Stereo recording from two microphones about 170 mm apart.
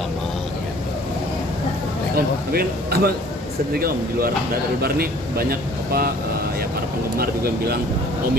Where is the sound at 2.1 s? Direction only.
65° right (ahead or behind).